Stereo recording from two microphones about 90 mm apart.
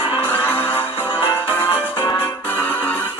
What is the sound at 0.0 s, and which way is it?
Music, 20° right (ahead or behind).